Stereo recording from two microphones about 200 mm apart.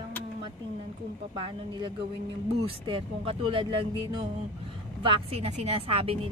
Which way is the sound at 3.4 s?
25° right (ahead or behind).